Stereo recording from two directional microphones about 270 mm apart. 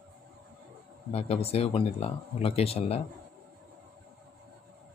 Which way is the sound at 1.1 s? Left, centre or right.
Left.